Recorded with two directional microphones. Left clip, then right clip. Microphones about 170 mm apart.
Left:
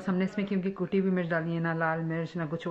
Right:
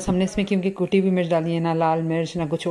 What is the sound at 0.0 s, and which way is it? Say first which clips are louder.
Speech: right 8 dB; 10° right (ahead or behind).